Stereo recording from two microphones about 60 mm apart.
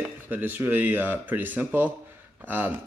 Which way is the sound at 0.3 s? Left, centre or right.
Right.